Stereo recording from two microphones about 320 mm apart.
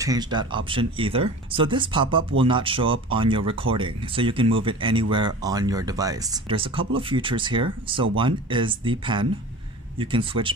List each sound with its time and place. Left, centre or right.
0.0 s speech: centre